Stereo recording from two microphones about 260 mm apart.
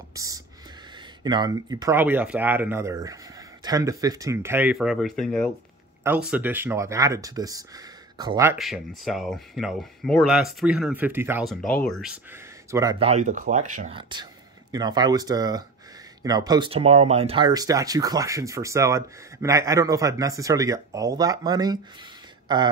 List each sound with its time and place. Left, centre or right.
0.1 s a sound: centre
0.9 s speech: centre
8.5 s speech: centre
13.0 s speech: right